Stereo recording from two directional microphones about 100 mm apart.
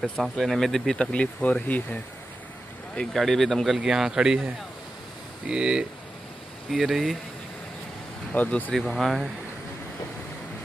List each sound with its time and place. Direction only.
0.0 s speech: centre (ahead or behind)
5.5 s speech: 10° right (ahead or behind)
8.3 s speech: 15° left (ahead or behind)
8.7 s speech: centre (ahead or behind)